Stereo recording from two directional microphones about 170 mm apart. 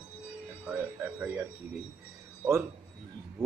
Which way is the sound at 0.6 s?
10° right (ahead or behind).